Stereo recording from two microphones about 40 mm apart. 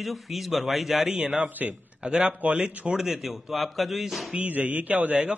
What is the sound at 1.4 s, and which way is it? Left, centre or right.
Speech, right.